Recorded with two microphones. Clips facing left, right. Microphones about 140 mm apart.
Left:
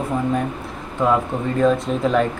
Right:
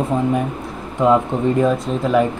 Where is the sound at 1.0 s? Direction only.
15° right (ahead or behind).